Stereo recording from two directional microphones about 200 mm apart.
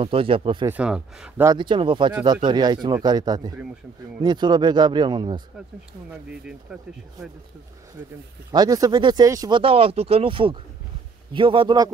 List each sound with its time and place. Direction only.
0.0 s speech: 25° right (ahead or behind)
0.7 s speech: 5° right (ahead or behind)
1.5 s speech: 25° right (ahead or behind)
6.7 s speech: 5° right (ahead or behind)
8.5 s speech: 20° right (ahead or behind)